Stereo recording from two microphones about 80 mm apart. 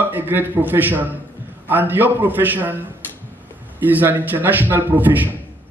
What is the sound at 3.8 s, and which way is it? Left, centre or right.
A man's voice, right.